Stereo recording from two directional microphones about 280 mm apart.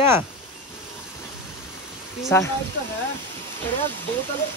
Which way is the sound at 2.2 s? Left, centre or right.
Centre.